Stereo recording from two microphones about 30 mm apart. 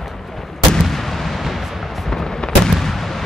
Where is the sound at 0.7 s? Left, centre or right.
Centre.